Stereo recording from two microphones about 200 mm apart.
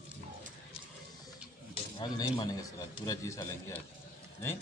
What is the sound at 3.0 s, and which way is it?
Speech, 20° left (ahead or behind).